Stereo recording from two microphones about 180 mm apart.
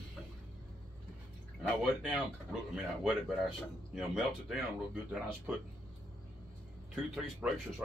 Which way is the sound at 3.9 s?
5° right (ahead or behind).